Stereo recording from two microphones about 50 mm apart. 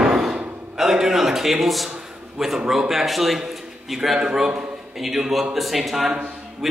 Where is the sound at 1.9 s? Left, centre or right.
Centre.